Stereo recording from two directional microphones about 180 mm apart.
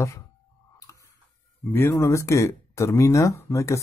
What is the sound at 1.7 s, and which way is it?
Speech, 10° left (ahead or behind).